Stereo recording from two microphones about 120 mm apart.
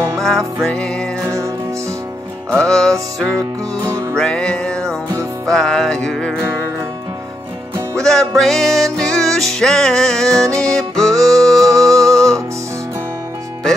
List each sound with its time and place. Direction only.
0.2 s music: 5° left (ahead or behind)
2.5 s music: 5° left (ahead or behind)
3.8 s music: 25° right (ahead or behind)
4.2 s music: 5° left (ahead or behind)
8.0 s music: 5° left (ahead or behind)
11.1 s music: 30° right (ahead or behind)
11.9 s music: 5° left (ahead or behind)